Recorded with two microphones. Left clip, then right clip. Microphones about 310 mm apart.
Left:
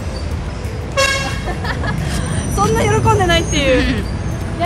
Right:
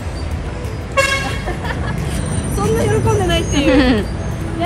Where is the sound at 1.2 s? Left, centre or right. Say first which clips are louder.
Even; centre.